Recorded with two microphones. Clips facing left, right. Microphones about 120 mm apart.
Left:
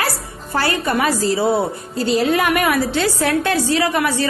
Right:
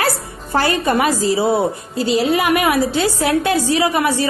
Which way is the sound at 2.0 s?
40° left (ahead or behind).